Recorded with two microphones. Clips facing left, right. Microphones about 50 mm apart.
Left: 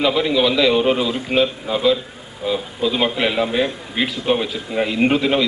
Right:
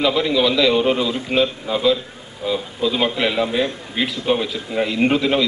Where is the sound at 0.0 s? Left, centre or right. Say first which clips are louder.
Even; centre.